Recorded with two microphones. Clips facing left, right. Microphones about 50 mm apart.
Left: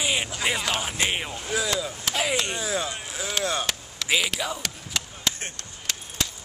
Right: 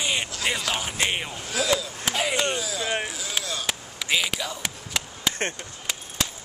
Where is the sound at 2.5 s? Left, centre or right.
Left.